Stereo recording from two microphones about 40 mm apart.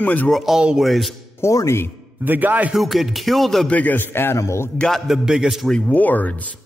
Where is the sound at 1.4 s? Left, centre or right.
Left.